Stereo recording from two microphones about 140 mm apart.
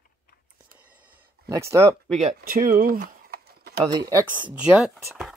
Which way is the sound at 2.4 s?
85° right.